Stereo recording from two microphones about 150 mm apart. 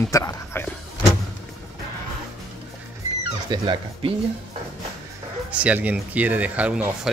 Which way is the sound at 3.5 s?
30° right (ahead or behind).